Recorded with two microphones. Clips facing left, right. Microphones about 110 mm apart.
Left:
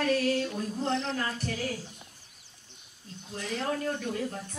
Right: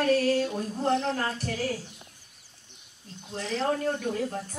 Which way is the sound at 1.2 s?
35° right (ahead or behind).